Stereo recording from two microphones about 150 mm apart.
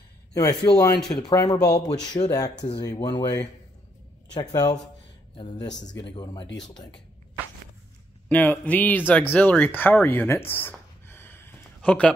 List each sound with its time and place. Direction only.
0.3 s speech: 20° left (ahead or behind)
5.4 s speech: 30° left (ahead or behind)
8.3 s speech: 10° left (ahead or behind)